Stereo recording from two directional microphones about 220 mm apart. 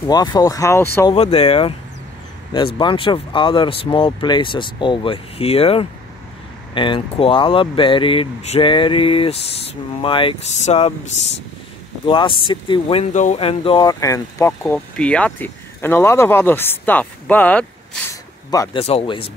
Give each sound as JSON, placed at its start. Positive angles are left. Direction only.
{"t": 0.0, "sound": "speech", "side_deg": 20}
{"t": 1.1, "sound": "speech", "side_deg": 25}
{"t": 18.5, "sound": "speech", "side_deg": 20}